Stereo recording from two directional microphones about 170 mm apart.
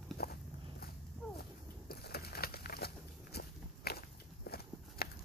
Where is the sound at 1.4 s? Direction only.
70° left (ahead or behind).